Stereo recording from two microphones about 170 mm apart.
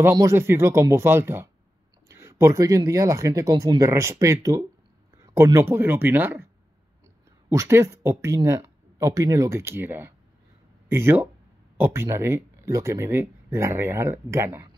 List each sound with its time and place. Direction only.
0.0 s speech: 15° right (ahead or behind)